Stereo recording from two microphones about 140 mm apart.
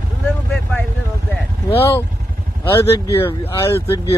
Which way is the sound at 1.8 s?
15° left (ahead or behind).